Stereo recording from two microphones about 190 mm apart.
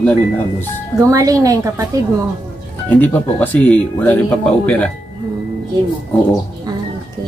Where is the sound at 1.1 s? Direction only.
15° right (ahead or behind).